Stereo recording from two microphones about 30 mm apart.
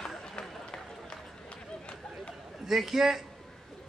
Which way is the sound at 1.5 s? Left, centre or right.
Left.